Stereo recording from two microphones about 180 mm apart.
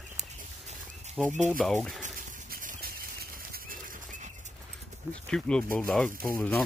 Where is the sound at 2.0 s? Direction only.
50° right (ahead or behind).